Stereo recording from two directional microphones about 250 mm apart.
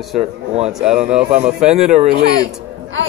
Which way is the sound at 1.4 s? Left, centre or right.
Right.